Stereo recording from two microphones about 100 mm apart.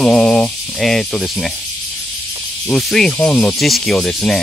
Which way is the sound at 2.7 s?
5° left (ahead or behind).